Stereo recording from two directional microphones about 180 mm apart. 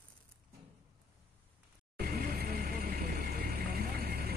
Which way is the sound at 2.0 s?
55° right (ahead or behind).